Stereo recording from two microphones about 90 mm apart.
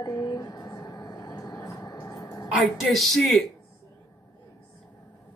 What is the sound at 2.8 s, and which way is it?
Speech, 5° left (ahead or behind).